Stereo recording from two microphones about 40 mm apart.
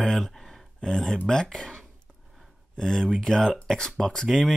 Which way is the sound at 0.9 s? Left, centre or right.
Centre.